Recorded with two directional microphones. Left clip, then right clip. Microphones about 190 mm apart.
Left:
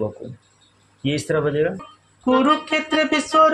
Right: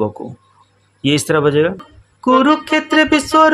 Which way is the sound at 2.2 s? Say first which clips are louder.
Right 5 dB; 50° right (ahead or behind).